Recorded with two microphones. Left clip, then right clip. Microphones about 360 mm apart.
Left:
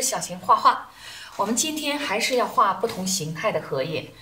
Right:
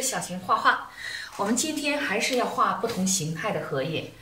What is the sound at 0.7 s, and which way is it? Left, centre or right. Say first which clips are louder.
Speech: left 3 dB; centre.